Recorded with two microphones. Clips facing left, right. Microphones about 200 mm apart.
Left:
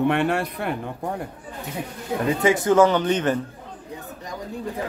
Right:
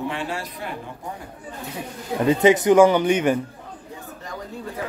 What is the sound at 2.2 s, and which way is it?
Speech, 20° right (ahead or behind).